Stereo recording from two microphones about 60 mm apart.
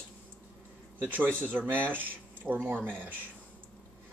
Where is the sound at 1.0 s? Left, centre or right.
Right.